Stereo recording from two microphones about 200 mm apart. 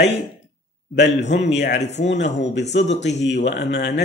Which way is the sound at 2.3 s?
60° left (ahead or behind).